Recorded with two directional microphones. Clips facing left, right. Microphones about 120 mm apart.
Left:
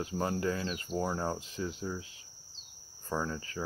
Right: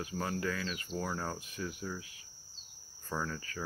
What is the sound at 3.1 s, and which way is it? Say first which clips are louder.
Cricket: left 3 dB; 20° left (ahead or behind).